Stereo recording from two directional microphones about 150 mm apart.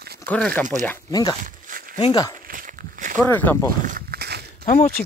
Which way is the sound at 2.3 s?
70° right (ahead or behind).